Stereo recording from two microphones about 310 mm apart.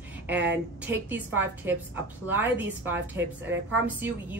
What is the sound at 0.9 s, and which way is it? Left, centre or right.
Speech, centre.